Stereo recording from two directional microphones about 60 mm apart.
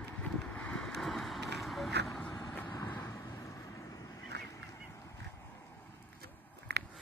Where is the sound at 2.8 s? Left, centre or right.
Left.